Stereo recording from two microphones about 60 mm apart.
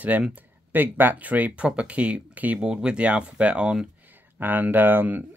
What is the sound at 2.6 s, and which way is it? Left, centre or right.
Speech, centre.